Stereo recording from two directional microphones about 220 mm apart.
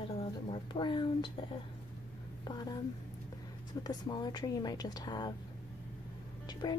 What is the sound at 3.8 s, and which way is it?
A woman's voice, 20° left (ahead or behind).